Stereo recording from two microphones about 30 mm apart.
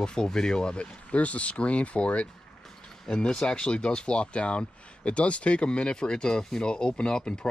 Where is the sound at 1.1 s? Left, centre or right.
Left.